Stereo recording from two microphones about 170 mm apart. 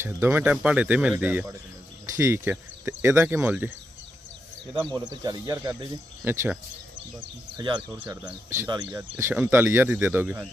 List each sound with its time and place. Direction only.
0.0 s speech: 15° right (ahead or behind)
4.8 s speech: 20° right (ahead or behind)
7.5 s speech: 25° right (ahead or behind)
8.0 s speech: 10° right (ahead or behind)